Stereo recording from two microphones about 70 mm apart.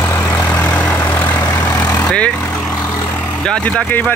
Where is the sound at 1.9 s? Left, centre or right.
Centre.